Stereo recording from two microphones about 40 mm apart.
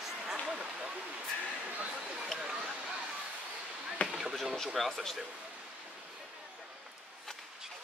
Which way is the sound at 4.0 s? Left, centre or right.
Left.